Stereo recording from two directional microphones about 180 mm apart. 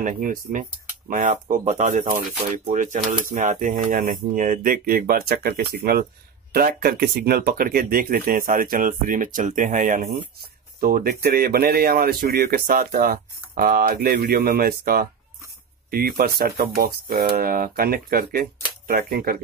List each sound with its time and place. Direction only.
0.0 s speech: 50° right (ahead or behind)